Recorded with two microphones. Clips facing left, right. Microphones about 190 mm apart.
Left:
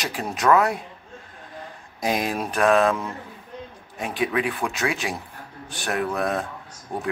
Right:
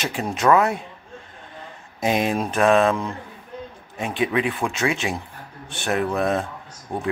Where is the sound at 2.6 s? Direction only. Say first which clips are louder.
Right 1 dB; 5° right (ahead or behind).